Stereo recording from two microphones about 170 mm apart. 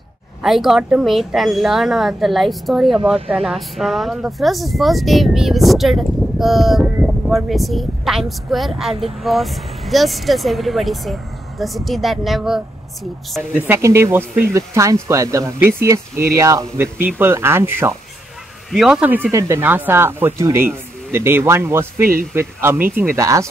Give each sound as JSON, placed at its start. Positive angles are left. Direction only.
{"t": 0.4, "sound": "speech", "side_deg": 0}
{"t": 13.6, "sound": "speech", "side_deg": -15}
{"t": 18.7, "sound": "speech", "side_deg": 0}